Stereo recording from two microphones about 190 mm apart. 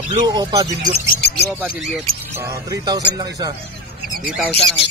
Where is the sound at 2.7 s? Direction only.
20° right (ahead or behind).